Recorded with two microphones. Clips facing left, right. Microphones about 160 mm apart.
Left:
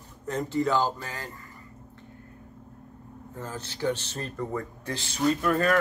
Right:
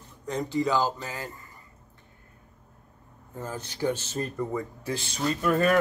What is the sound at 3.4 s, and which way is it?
Speech, 15° right (ahead or behind).